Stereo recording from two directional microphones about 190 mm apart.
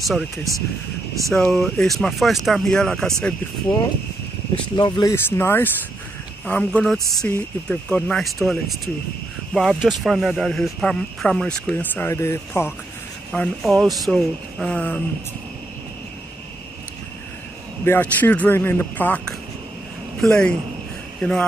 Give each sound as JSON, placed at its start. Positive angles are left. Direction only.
{"t": 0.0, "sound": "speech", "side_deg": 0}
{"t": 4.7, "sound": "speech", "side_deg": 25}
{"t": 5.1, "sound": "speech", "side_deg": 10}
{"t": 13.3, "sound": "speech", "side_deg": 5}
{"t": 17.8, "sound": "a man's voice", "side_deg": 10}